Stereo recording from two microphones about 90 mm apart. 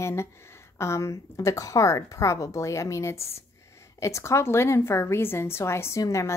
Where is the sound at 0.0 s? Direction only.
30° left (ahead or behind).